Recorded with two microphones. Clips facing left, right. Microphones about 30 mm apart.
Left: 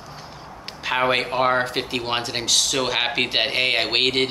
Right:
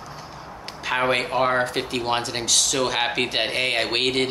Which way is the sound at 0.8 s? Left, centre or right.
Centre.